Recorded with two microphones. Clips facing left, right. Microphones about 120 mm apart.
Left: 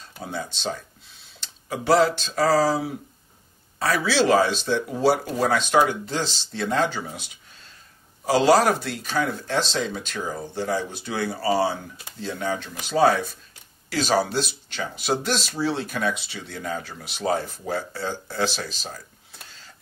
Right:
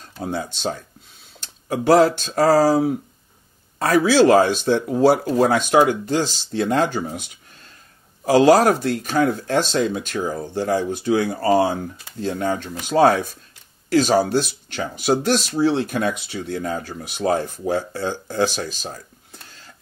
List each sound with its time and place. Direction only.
0.2 s speech: 50° right (ahead or behind)